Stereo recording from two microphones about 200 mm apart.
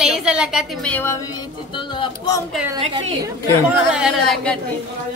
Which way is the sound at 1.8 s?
20° left (ahead or behind).